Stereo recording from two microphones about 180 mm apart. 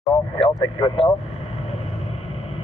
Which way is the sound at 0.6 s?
25° left (ahead or behind).